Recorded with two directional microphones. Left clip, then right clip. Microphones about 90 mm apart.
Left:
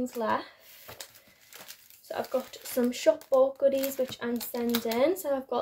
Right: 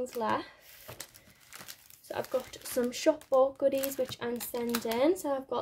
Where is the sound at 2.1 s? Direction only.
65° right (ahead or behind); by 4.1 s 45° right (ahead or behind).